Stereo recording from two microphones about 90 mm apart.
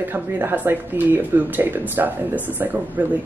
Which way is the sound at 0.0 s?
25° right (ahead or behind).